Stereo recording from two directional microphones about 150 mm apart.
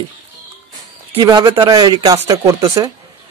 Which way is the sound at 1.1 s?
30° right (ahead or behind).